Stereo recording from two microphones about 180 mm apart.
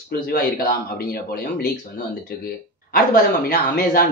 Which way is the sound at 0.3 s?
60° left (ahead or behind).